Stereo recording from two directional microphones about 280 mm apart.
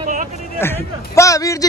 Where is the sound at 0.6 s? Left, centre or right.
Centre.